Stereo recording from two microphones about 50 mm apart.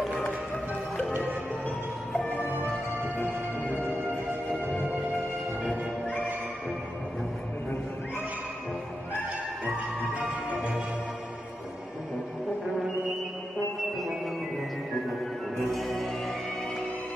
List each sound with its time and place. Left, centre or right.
0.1 s music: left
2.1 s music: left
5.7 s music: left
15.5 s music: centre